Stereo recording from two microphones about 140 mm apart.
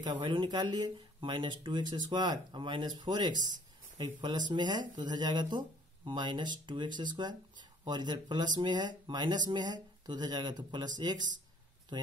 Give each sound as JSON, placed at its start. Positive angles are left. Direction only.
{"t": 0.0, "sound": "speech", "side_deg": -30}